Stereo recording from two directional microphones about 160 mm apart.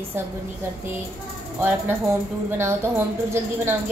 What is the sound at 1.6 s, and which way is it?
A woman's voice, 15° right (ahead or behind).